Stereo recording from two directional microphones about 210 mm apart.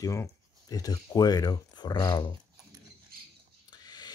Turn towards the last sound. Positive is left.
turn(degrees=20)  # may be behind; listen again after turning